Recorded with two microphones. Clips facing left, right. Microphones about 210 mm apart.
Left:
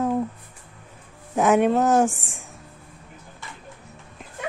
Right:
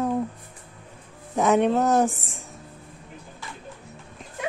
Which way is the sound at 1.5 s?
Centre (ahead or behind).